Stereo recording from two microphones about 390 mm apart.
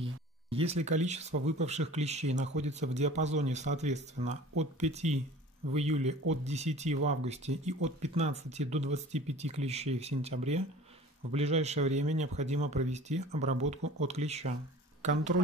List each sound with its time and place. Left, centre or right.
0.0 s speech: centre